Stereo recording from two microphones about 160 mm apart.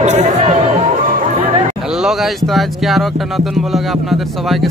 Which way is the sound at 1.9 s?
5° right (ahead or behind).